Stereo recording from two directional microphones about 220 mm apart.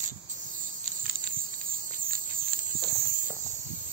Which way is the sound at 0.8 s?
40° right (ahead or behind).